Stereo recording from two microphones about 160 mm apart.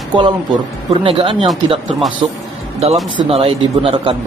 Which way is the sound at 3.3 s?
35° right (ahead or behind).